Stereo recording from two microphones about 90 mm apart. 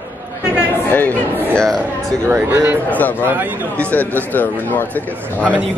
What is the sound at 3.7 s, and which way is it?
Speech, 20° left (ahead or behind).